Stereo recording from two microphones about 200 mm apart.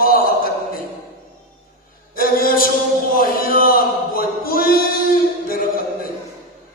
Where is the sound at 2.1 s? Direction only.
45° left (ahead or behind).